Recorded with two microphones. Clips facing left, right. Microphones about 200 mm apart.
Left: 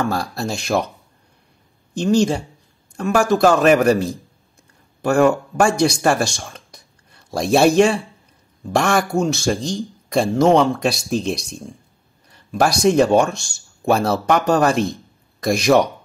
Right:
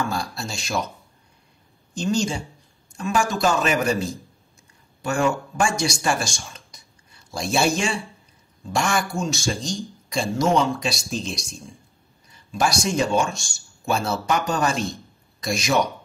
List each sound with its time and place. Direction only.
0.0 s speech: 60° left (ahead or behind)
2.0 s speech: 60° left (ahead or behind)